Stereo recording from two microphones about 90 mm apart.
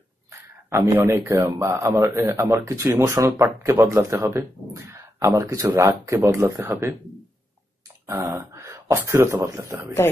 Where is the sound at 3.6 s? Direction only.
35° right (ahead or behind).